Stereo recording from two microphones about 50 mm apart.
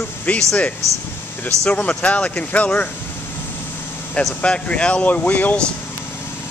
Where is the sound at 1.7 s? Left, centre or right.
Left.